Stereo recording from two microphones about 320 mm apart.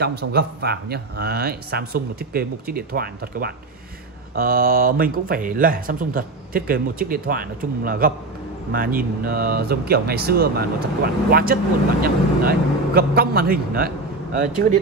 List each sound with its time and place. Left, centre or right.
0.0 s speech: right